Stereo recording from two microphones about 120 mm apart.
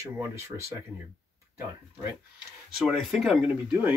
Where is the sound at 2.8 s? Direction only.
Centre (ahead or behind).